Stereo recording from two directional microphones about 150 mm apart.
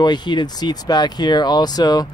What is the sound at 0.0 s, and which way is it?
Speech, 30° left (ahead or behind).